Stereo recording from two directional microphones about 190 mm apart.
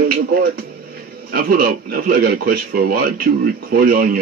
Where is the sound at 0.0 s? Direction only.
50° right (ahead or behind).